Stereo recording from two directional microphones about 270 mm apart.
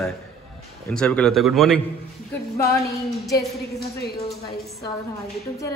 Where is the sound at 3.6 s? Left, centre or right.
Left.